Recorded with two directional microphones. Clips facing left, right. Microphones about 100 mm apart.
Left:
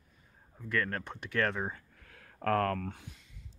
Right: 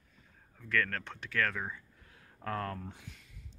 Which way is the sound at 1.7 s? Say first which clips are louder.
Right 1 dB; 80° left.